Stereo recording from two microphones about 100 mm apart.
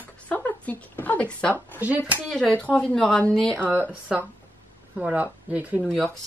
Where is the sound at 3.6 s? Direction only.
20° right (ahead or behind).